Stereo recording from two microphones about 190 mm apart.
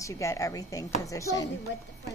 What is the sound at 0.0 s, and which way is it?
Speech, 15° left (ahead or behind).